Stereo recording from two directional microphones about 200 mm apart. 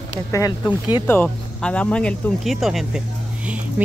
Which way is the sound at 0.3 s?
15° left (ahead or behind).